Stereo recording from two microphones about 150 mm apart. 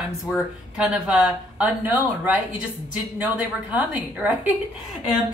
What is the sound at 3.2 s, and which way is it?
A woman's voice, 10° right (ahead or behind).